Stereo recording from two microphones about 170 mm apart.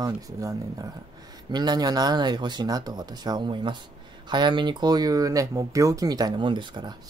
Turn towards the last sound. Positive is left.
turn(degrees=-25)  # may be behind; listen again after turning